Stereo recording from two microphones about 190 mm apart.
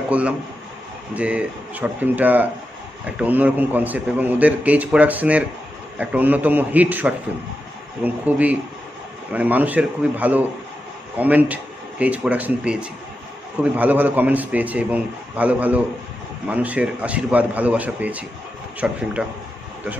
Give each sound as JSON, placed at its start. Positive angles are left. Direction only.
{"t": 1.1, "sound": "a man's voice", "side_deg": -5}